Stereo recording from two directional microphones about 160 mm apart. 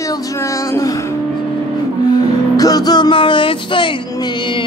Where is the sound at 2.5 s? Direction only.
25° left (ahead or behind).